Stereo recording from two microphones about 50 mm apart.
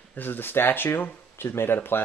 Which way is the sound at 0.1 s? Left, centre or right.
Left.